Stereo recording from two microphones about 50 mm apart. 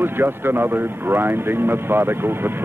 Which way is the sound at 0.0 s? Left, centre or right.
Right.